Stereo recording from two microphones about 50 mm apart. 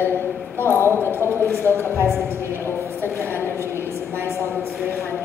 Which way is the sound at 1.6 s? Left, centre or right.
Left.